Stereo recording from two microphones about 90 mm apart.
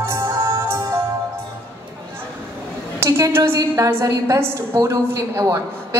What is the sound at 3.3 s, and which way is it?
A woman's voice, 30° right (ahead or behind).